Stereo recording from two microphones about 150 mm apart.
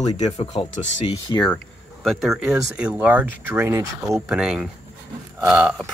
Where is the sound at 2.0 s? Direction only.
Centre (ahead or behind).